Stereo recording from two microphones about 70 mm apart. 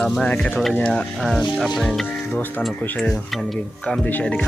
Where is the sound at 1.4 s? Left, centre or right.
Centre.